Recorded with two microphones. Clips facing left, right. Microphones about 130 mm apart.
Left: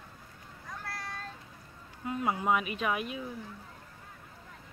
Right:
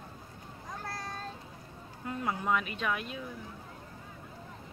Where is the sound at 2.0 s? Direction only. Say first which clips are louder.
Left 3 dB; 15° left (ahead or behind).